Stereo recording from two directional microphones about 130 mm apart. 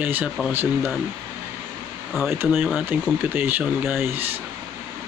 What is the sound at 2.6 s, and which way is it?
Speech, 5° right (ahead or behind).